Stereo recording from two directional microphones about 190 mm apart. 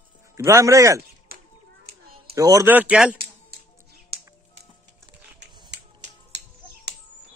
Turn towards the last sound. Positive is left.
turn(degrees=-65)  # may be behind; listen again after turning